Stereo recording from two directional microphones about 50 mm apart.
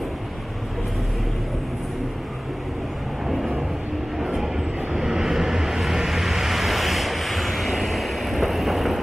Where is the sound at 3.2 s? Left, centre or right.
Centre.